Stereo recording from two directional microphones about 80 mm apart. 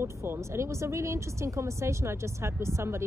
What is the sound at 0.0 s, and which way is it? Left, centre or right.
Speech, right.